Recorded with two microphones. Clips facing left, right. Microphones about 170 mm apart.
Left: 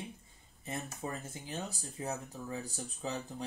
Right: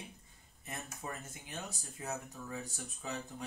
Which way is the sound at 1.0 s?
30° left (ahead or behind).